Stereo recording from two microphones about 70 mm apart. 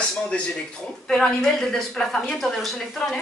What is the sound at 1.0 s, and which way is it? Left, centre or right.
A woman's voice, centre.